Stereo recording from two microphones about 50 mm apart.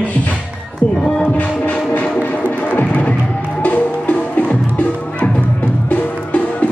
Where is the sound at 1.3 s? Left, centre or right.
Left.